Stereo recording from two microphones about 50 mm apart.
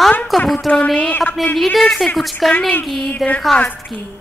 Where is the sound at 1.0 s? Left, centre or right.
Left.